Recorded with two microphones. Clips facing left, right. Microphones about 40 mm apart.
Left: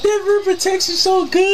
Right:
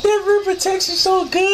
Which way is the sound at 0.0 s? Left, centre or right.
Centre.